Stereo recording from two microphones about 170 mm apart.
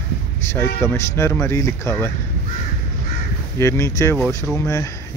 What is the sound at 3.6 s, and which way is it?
Speech, 15° left (ahead or behind).